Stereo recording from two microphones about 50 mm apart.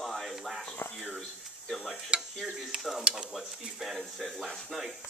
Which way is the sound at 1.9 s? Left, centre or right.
Centre.